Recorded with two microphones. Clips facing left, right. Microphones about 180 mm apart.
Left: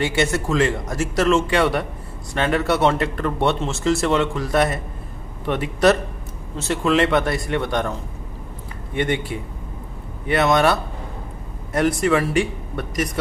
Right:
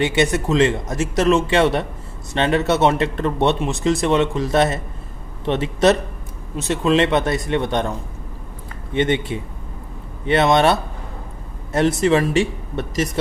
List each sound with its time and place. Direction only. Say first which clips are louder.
0.0 s speech: right 3 dB; 20° right (ahead or behind)
8.9 s speech: right 3 dB; 20° right (ahead or behind)